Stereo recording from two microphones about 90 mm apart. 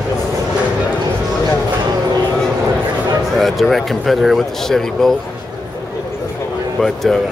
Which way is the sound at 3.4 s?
Centre (ahead or behind).